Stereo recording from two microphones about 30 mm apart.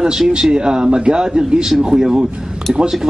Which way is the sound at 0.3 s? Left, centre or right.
Right.